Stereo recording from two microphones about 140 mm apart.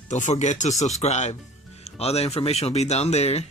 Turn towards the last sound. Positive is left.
turn(degrees=50)  # may be behind; listen again after turning